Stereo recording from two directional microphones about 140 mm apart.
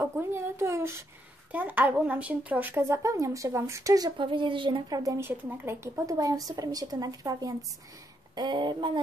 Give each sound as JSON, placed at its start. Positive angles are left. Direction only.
{"t": 0.0, "sound": "speech", "side_deg": -15}